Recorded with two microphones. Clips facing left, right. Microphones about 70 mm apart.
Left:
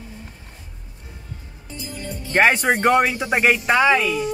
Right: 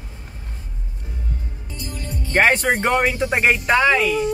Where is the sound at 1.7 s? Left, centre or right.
Left.